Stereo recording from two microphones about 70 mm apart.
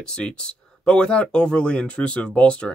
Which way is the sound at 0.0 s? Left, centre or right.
Centre.